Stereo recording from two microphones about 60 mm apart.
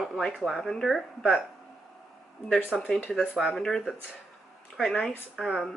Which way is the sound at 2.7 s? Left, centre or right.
Centre.